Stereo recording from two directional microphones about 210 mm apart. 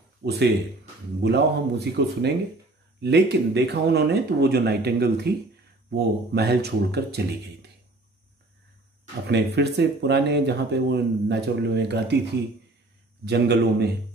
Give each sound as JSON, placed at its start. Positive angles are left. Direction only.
{"t": 0.2, "sound": "speech", "side_deg": -55}
{"t": 9.3, "sound": "speech", "side_deg": -55}
{"t": 13.2, "sound": "speech", "side_deg": -50}